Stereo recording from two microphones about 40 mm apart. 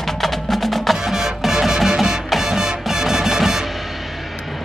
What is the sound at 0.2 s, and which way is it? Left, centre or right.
Wood block, centre.